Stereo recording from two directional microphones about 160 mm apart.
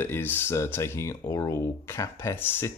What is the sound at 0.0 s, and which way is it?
Speech, 10° left (ahead or behind).